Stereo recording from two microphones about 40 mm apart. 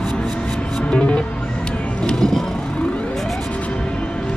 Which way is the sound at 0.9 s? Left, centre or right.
Left.